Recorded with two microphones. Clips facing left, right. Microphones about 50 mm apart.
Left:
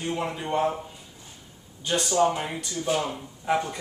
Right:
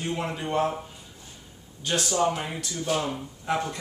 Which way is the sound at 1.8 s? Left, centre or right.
Centre.